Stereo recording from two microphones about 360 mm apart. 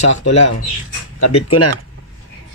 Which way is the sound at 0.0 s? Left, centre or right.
Left.